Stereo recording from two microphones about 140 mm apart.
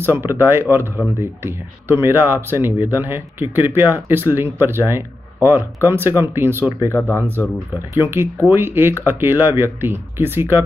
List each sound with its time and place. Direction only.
0.0 s speech: 15° right (ahead or behind)
7.0 s speech: 15° left (ahead or behind)
8.1 s speech: 15° right (ahead or behind)